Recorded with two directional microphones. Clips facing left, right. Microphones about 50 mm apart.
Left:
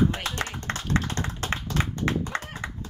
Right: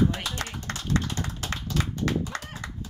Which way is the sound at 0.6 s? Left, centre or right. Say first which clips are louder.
Even; left.